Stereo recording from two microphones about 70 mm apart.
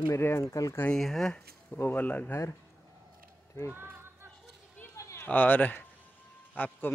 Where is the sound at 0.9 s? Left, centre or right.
Centre.